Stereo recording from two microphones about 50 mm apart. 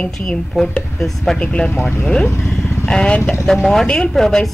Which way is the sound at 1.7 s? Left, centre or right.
Left.